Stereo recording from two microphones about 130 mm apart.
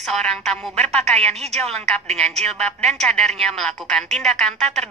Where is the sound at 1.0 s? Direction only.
55° right (ahead or behind).